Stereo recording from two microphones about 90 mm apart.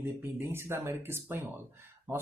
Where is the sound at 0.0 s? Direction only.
25° right (ahead or behind).